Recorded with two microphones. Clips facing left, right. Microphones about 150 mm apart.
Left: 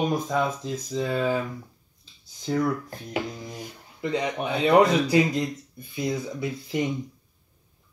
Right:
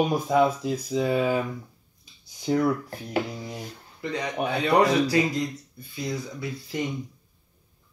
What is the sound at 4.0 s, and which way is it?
Speech, 20° left (ahead or behind).